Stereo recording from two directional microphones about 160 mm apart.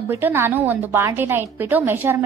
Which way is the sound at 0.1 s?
15° right (ahead or behind).